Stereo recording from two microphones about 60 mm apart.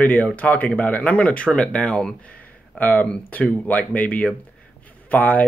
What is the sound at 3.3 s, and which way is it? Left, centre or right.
Speech, left.